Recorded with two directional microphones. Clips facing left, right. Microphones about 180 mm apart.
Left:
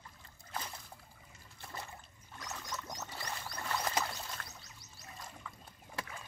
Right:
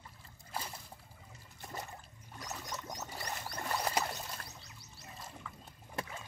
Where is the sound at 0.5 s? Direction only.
10° right (ahead or behind).